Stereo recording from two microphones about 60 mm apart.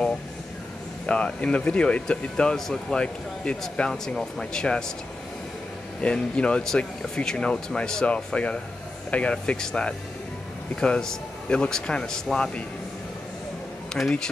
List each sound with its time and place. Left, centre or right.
1.0 s speech: left
5.9 s speech: centre
13.9 s speech: centre